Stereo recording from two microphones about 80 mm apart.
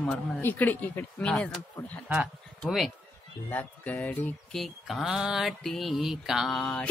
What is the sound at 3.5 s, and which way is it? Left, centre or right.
Speech, left.